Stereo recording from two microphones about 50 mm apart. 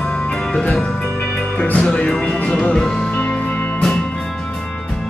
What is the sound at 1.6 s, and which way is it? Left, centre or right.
Music, left.